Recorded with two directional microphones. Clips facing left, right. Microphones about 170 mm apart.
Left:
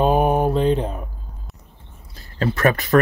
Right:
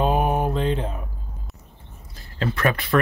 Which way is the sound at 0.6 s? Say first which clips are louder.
Left 5 dB; 40° left (ahead or behind).